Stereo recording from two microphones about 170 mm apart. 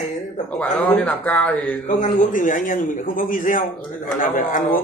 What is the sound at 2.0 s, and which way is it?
A man's voice, 50° left (ahead or behind).